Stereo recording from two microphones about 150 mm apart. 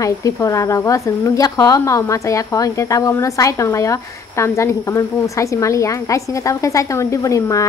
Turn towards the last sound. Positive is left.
turn(degrees=20)  # may be behind; listen again after turning